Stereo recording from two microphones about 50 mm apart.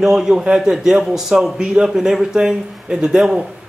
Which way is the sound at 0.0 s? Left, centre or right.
Centre.